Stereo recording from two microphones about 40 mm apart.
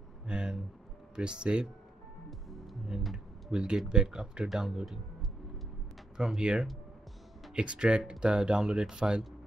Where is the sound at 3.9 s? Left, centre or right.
Right.